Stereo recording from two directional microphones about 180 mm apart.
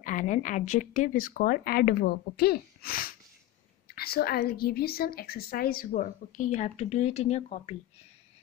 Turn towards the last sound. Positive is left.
turn(degrees=35)  # may be behind; listen again after turning